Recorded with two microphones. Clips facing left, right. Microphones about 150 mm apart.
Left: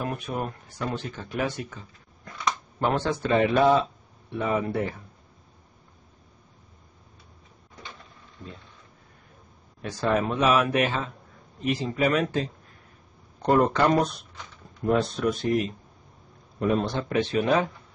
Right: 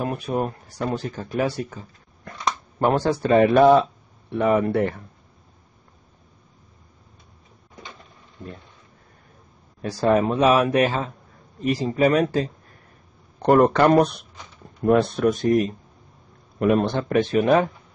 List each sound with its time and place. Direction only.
0.0 s speech: 30° right (ahead or behind)
2.3 s a sound: 60° right (ahead or behind)
2.8 s speech: 40° right (ahead or behind); by 5.0 s 60° right (ahead or behind)
8.4 s speech: 45° right (ahead or behind)
9.8 s speech: 35° right (ahead or behind)
13.4 s speech: 65° right (ahead or behind); by 15.7 s 45° right (ahead or behind)
16.5 s speech: 65° right (ahead or behind); by 17.6 s 45° right (ahead or behind)